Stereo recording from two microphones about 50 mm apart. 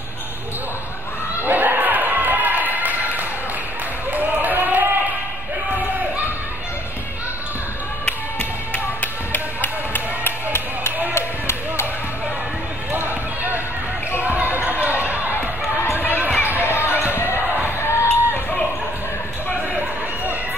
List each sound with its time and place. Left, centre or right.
1.4 s a sound: right
9.0 s music: left
11.1 s a sound: left
12.9 s run: right
14.2 s basketball bounce: right
15.8 s run: left
16.6 s basketball bounce: left
17.6 s music: left